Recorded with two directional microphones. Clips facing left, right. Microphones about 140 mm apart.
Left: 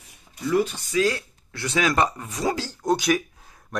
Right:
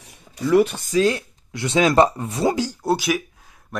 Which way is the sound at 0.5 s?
70° right (ahead or behind).